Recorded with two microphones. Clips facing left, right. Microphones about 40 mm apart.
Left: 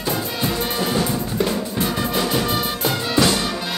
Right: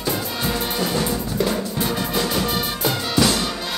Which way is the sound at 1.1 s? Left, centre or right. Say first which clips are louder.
Left 1 dB; left.